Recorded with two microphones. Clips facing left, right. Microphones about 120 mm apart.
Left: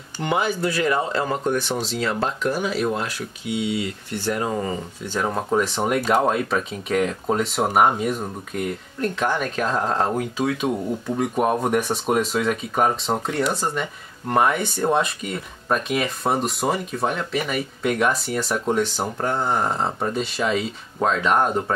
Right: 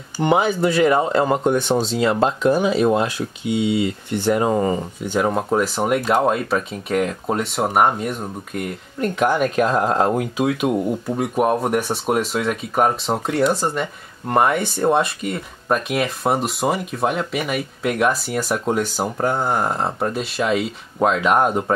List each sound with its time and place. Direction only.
0.2 s speech: 20° right (ahead or behind)